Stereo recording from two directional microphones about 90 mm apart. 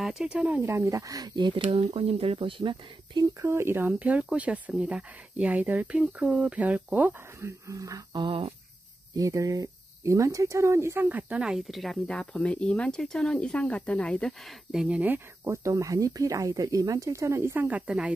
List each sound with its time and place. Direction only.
0.0 s speech: 5° right (ahead or behind)
0.7 s speech: 30° right (ahead or behind); by 1.6 s 55° right (ahead or behind)
1.7 s speech: 90° right; by 3.3 s 65° right (ahead or behind)
3.3 s speech: 30° right (ahead or behind)
7.3 s speech: 35° right (ahead or behind)
8.1 s a sound: 65° right (ahead or behind); by 8.5 s 80° right
9.1 s speech: 40° right (ahead or behind)
11.1 s speech: 15° right (ahead or behind); by 14.3 s 10° left (ahead or behind)
14.7 s speech: 5° right (ahead or behind)
15.0 s speech: 20° right (ahead or behind)
15.4 s speech: 35° right (ahead or behind)
17.6 s speech: 15° right (ahead or behind)